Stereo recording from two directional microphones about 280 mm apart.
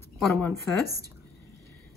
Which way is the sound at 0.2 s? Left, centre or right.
Centre.